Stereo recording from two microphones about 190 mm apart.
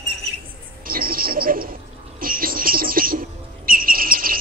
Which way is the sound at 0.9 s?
50° right (ahead or behind).